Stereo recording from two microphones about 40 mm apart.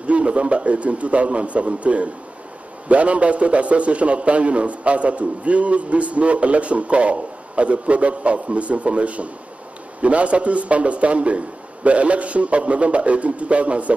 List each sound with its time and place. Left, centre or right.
0.0 s a man's voice: right